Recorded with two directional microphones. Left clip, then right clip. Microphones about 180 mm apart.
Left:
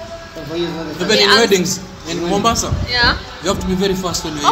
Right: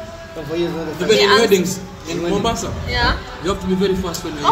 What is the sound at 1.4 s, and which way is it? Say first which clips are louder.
Speech: left 1 dB; 45° left (ahead or behind).